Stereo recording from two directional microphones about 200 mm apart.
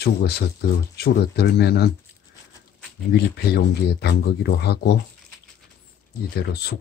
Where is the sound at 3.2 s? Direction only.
55° left (ahead or behind).